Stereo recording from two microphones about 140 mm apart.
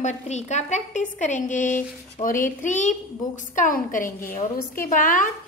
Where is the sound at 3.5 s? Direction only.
75° left (ahead or behind).